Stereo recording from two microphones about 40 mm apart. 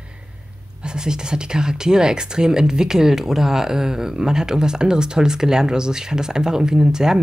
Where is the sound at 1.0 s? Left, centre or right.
Centre.